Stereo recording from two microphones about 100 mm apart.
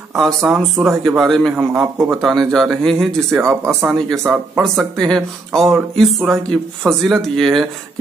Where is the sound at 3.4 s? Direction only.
25° right (ahead or behind).